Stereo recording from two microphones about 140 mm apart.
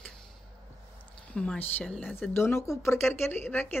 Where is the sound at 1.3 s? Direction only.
10° left (ahead or behind).